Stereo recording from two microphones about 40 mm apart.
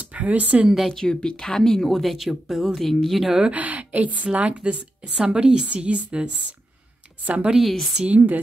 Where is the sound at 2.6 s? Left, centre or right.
Centre.